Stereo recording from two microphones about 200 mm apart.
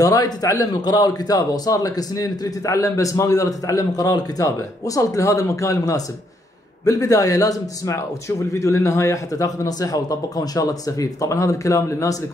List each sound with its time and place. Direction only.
0.0 s a man's voice: 15° left (ahead or behind)